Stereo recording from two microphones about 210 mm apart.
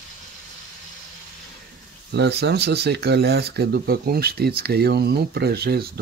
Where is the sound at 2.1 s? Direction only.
55° right (ahead or behind).